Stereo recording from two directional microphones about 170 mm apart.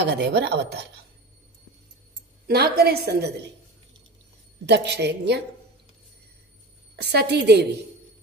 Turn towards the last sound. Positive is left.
turn(degrees=-75)  # may be behind; listen again after turning